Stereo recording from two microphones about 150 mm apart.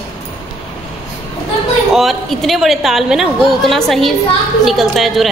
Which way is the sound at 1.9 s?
Centre (ahead or behind).